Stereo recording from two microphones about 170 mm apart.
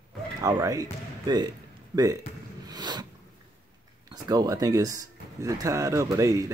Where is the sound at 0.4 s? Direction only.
20° right (ahead or behind).